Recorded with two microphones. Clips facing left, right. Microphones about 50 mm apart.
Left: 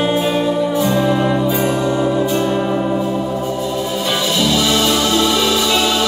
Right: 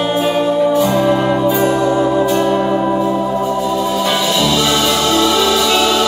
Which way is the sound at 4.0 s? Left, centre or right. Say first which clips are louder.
Right 2 dB; right.